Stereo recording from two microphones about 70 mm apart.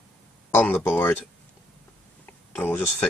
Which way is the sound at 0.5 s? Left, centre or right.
Left.